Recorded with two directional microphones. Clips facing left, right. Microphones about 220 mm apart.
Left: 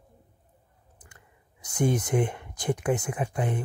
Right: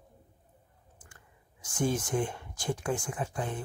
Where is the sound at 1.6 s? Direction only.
20° left (ahead or behind).